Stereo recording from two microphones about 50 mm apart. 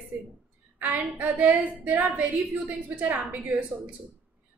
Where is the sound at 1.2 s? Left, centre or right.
Right.